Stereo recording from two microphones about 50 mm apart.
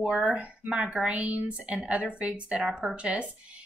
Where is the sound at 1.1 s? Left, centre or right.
Right.